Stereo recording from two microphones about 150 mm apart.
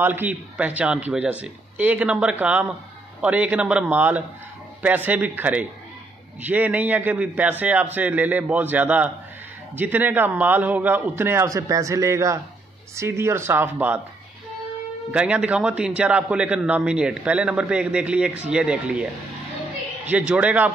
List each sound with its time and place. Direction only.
0.0 s a man's voice: 15° right (ahead or behind)
15.0 s a man's voice: 5° right (ahead or behind)
20.1 s a man's voice: 10° right (ahead or behind)